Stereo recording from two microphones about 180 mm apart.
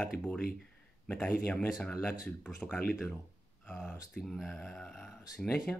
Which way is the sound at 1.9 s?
20° left (ahead or behind).